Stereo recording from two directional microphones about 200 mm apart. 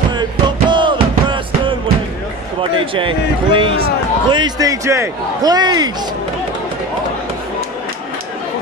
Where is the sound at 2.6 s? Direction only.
25° right (ahead or behind).